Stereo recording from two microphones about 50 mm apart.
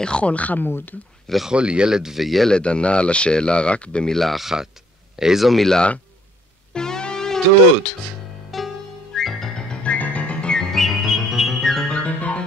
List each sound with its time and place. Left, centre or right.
0.0 s speech: left
0.7 s speech: left
1.5 s speech: centre
2.4 s speech: centre
4.1 s speech: centre
6.7 s music: centre
8.5 s music: centre
9.8 s music: left
10.7 s music: centre
11.6 s music: centre
11.9 s music: left